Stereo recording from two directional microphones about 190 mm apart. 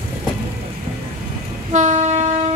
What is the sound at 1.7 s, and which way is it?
Train, 40° right (ahead or behind).